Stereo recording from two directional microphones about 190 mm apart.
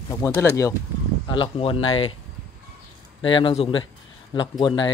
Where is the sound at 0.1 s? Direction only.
15° left (ahead or behind).